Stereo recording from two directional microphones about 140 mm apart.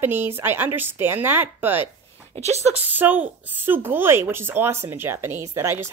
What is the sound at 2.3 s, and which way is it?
Speech, 50° right (ahead or behind).